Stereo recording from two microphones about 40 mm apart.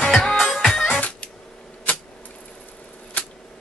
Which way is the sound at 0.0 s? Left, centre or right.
Centre.